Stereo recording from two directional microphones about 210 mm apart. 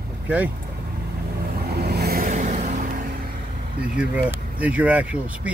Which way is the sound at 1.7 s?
50° right (ahead or behind).